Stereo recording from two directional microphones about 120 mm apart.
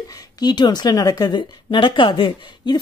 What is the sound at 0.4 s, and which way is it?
A woman's voice, 35° left (ahead or behind).